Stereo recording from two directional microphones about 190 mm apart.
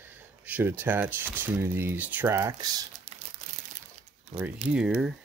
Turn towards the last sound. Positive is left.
turn(degrees=-5)  # may be behind; listen again after turning